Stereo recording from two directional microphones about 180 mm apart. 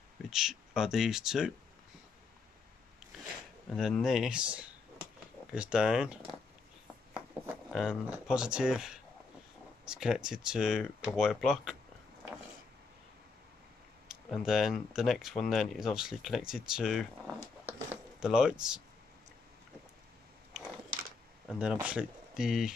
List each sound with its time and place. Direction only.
0.3 s speech: 5° right (ahead or behind)
3.7 s speech: centre (ahead or behind)
7.7 s speech: 5° right (ahead or behind)
14.0 s speech: 5° right (ahead or behind)
21.5 s speech: 5° right (ahead or behind)